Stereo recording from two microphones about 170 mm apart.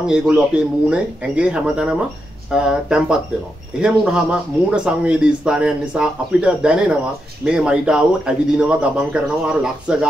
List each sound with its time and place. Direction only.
0.0 s speech: 5° right (ahead or behind)